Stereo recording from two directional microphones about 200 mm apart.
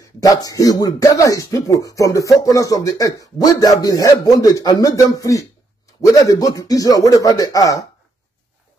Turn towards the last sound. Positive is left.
turn(degrees=15)  # may be behind; listen again after turning